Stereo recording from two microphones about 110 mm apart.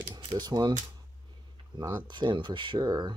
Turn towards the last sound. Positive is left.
turn(degrees=-35)  # may be behind; listen again after turning